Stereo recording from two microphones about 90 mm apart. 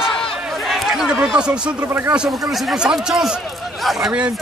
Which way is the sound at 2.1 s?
5° right (ahead or behind).